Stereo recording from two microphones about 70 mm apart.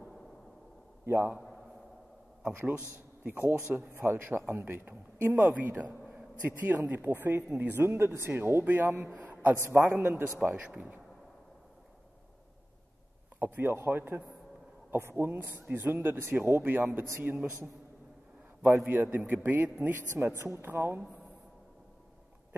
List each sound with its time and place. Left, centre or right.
1.0 s speech: right
3.3 s speech: right
9.0 s a man's voice: right
10.5 s speech: centre
13.4 s speech: right
18.9 s speech: right